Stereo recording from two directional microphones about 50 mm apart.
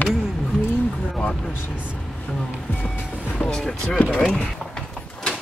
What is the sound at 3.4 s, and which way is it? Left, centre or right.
Vehicle, centre.